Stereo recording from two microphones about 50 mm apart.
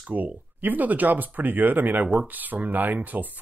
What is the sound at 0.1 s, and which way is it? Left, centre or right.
Speech, right.